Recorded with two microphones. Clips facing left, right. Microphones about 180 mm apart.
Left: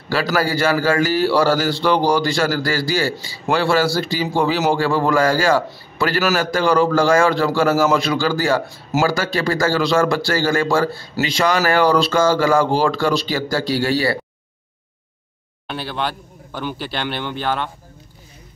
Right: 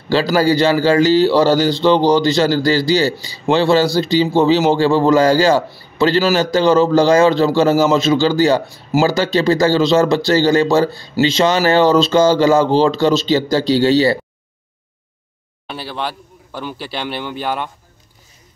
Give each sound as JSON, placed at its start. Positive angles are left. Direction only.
{"t": 0.1, "sound": "a man's voice", "side_deg": -25}
{"t": 15.6, "sound": "speech", "side_deg": -5}